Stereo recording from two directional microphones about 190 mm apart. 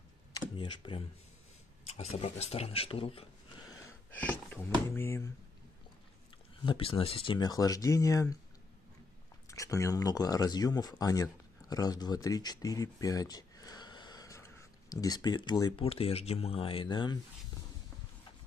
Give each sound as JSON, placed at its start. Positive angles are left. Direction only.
{"t": 0.3, "sound": "camera", "side_deg": 25}
{"t": 2.0, "sound": "speech", "side_deg": 35}
{"t": 3.8, "sound": "speech", "side_deg": 10}
{"t": 6.6, "sound": "speech", "side_deg": 25}
{"t": 9.5, "sound": "speech", "side_deg": 15}